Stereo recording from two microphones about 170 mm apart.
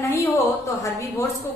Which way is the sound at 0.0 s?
15° left (ahead or behind).